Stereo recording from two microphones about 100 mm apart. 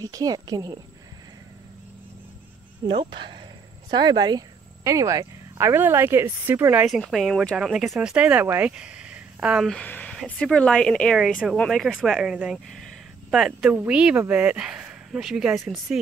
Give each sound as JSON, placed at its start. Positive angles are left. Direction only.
{"t": 0.0, "sound": "a woman's voice", "side_deg": -35}
{"t": 2.9, "sound": "speech", "side_deg": -50}
{"t": 6.9, "sound": "speech", "side_deg": 0}
{"t": 9.8, "sound": "a sound", "side_deg": 15}
{"t": 10.1, "sound": "speech", "side_deg": 10}